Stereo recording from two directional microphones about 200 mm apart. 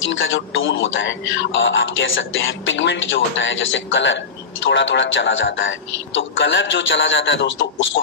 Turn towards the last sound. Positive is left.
turn(degrees=65)  # may be behind; listen again after turning